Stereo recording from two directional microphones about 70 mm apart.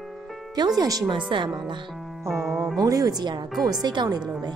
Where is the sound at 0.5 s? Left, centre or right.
Right.